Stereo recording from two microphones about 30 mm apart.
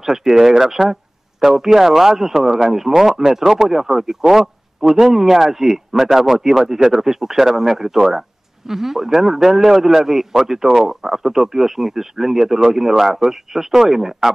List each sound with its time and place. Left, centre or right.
0.0 s speech: centre